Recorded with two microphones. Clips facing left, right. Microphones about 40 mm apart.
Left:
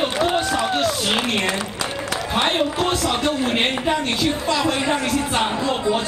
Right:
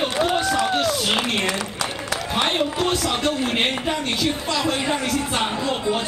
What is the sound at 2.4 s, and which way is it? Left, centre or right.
A man's voice, centre.